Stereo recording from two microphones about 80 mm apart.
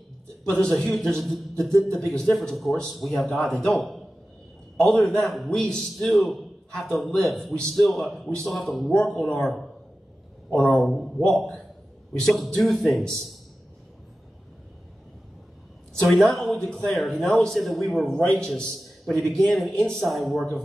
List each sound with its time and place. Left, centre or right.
0.9 s a man's voice: centre
15.9 s speech: centre
16.3 s a man's voice: centre
16.6 s speech: centre
18.2 s a man's voice: centre
18.5 s speech: centre